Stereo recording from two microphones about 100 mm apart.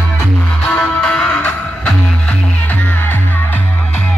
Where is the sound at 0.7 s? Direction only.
10° left (ahead or behind).